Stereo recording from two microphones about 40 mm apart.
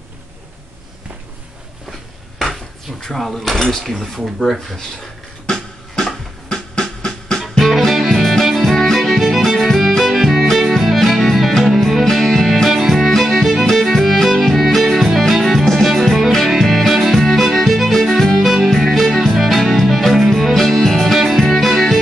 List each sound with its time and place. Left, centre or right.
1.9 s dishes: centre
3.0 s speech: centre
3.8 s cutlery: centre
5.5 s music: centre
7.6 s music: centre
12.6 s music: centre
20.5 s music: centre